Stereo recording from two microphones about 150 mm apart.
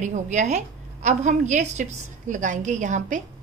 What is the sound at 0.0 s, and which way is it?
A woman's voice, 50° right (ahead or behind).